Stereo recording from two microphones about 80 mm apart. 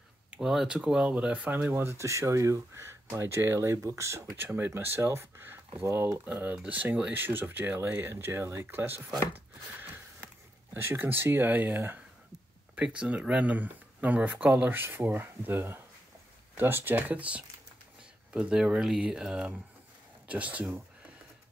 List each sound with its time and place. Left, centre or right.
0.4 s speech: centre; by 4.4 s right
4.4 s speech: right
12.7 s speech: centre